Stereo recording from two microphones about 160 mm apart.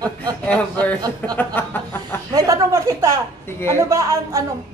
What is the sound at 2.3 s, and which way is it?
Speech, 20° right (ahead or behind).